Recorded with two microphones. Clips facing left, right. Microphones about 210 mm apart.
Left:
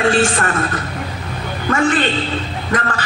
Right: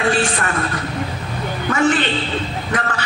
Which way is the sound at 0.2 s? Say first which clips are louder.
Left 3 dB; 45° left (ahead or behind).